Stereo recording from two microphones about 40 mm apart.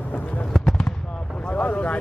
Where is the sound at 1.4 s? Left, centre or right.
Left.